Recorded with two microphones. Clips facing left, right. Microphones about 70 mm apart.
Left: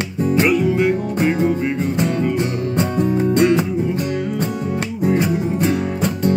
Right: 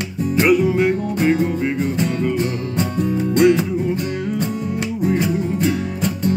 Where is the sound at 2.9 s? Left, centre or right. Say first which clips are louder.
Left 1 dB; left.